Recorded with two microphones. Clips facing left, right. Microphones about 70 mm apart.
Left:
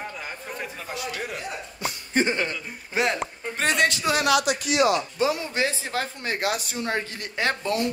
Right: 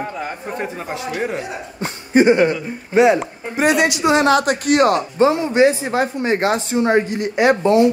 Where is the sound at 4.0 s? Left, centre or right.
Right.